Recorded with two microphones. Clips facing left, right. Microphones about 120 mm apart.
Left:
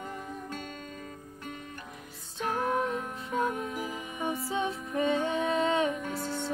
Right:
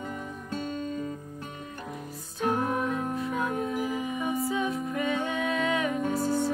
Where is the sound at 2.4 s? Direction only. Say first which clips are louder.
Right 4 dB; 30° right (ahead or behind).